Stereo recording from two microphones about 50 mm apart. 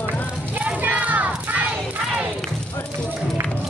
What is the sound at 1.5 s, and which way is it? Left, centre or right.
Battle cry, right.